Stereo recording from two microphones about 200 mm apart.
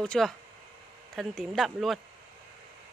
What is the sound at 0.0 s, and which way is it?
Speech, 5° left (ahead or behind).